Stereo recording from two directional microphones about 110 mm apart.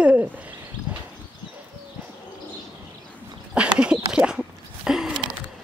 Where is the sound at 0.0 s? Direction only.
15° right (ahead or behind).